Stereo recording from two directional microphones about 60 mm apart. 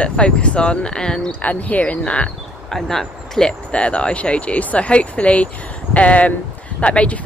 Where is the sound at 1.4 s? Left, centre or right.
Left.